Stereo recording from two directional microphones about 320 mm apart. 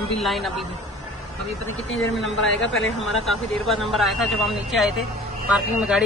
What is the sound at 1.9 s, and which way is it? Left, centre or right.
Speech, left.